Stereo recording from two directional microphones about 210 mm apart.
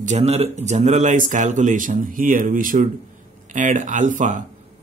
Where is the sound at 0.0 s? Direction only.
30° right (ahead or behind).